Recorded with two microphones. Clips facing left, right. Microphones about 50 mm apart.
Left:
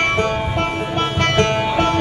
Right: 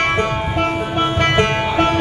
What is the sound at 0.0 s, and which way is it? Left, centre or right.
Music, centre.